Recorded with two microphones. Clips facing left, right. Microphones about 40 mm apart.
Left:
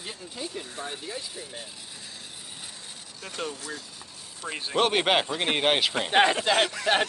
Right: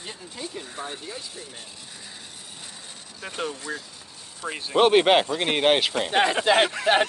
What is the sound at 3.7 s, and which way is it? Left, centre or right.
Speech, right.